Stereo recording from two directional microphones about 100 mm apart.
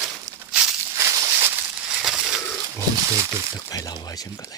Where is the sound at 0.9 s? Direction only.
30° right (ahead or behind).